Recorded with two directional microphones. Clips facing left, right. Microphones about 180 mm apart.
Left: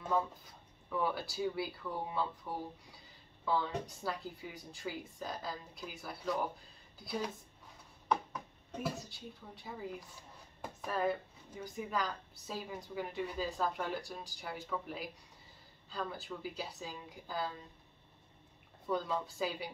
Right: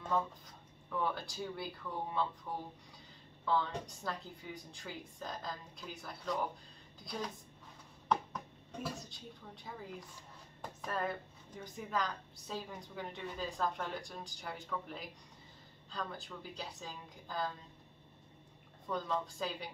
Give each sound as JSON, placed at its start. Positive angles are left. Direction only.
{"t": 0.1, "sound": "speech", "side_deg": 5}
{"t": 8.9, "sound": "speech", "side_deg": 5}
{"t": 18.9, "sound": "speech", "side_deg": 5}